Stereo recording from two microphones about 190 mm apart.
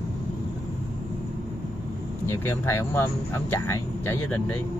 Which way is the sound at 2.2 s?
15° left (ahead or behind).